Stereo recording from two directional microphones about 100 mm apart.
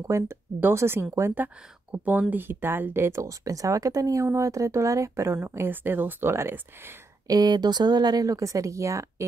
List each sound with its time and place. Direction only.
0.0 s speech: 25° right (ahead or behind)
7.2 s speech: 45° right (ahead or behind)